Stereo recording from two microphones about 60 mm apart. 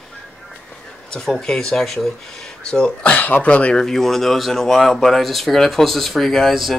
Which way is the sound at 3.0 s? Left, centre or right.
Left.